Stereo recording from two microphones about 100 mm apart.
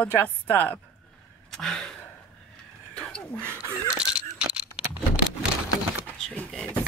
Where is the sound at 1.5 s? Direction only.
5° left (ahead or behind).